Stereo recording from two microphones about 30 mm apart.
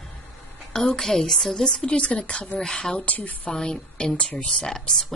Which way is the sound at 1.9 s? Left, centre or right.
Left.